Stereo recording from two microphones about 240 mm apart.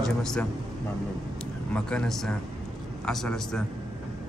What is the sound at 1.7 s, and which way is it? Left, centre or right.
Speech, centre.